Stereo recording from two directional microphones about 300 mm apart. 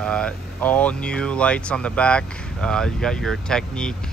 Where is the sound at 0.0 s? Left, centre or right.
Centre.